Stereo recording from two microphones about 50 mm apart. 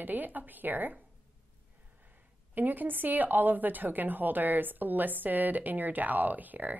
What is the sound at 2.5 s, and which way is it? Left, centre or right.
Speech, right.